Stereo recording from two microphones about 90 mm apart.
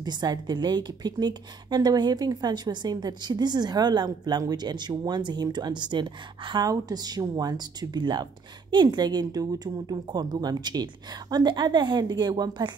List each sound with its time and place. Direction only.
0.0 s a woman's voice: 50° right (ahead or behind)